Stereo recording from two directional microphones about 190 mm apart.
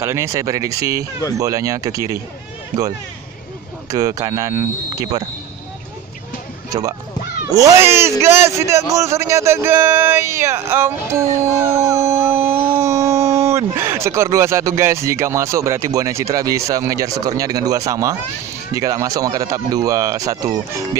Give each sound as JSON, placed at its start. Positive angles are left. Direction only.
{"t": 0.0, "sound": "speech", "side_deg": -15}
{"t": 3.9, "sound": "speech", "side_deg": -20}
{"t": 6.7, "sound": "speech", "side_deg": -20}